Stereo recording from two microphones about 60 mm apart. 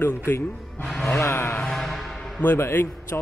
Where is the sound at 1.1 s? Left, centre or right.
Left.